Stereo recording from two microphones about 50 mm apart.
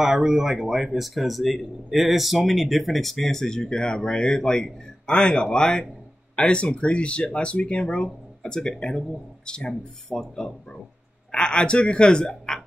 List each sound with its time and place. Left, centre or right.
0.0 s speech: centre; by 9.8 s left
10.0 s speech: centre